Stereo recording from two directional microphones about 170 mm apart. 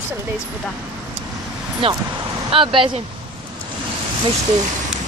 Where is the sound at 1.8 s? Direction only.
35° right (ahead or behind).